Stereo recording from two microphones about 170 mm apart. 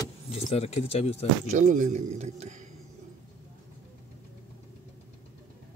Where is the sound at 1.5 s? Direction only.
50° right (ahead or behind).